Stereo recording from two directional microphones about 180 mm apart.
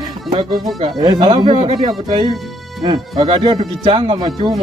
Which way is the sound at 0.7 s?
25° right (ahead or behind).